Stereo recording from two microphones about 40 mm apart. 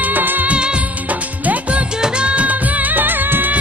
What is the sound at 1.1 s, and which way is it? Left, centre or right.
Music, right.